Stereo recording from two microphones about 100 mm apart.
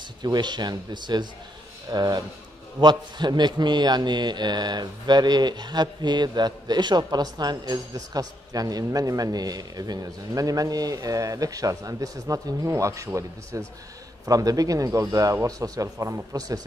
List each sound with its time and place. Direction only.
0.2 s a man's voice: 45° right (ahead or behind)